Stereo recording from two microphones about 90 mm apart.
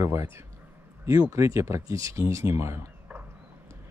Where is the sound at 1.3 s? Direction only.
35° right (ahead or behind).